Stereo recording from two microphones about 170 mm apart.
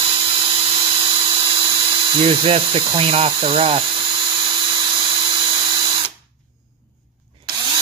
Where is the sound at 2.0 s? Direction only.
30° right (ahead or behind).